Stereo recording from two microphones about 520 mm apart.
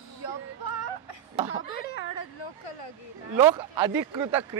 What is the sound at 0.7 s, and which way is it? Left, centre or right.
Music, left.